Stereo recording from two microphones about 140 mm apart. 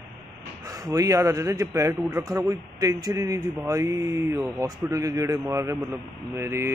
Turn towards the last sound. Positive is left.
turn(degrees=-20)  # may be behind; listen again after turning